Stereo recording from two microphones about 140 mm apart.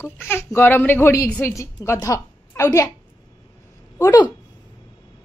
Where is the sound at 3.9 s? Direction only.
20° left (ahead or behind).